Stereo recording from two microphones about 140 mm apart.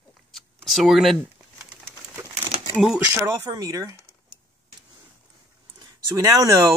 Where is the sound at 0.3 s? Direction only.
Centre (ahead or behind).